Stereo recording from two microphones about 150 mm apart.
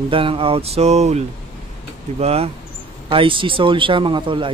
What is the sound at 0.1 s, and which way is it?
Speech, 35° right (ahead or behind).